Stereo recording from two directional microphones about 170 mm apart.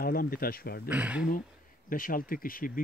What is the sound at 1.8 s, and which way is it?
Speech, 55° left (ahead or behind).